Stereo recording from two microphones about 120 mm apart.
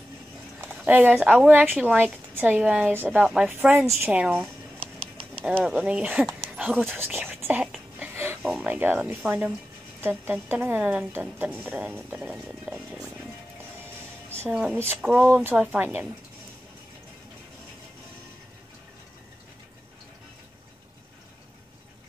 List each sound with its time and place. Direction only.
0.7 s a woman's voice: 10° right (ahead or behind)
6.5 s dog: 5° right (ahead or behind)
6.8 s speech: 15° right (ahead or behind)
8.1 s a sound: 20° right (ahead or behind)
8.4 s a sound: 5° right (ahead or behind)
8.6 s a woman's voice: 15° right (ahead or behind)
14.7 s a woman's voice: 15° right (ahead or behind)
15.8 s a woman's voice: 15° right (ahead or behind)